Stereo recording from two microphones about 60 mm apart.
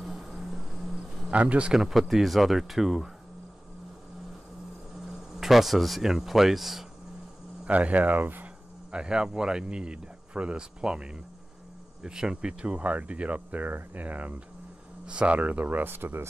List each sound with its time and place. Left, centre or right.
0.0 s music: centre
1.3 s speech: right; by 3.1 s centre
5.3 s speech: centre
7.6 s speech: right
8.9 s speech: centre; by 16.3 s right